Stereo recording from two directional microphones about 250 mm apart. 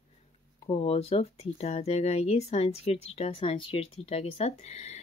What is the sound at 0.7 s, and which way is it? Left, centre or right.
Speech, left.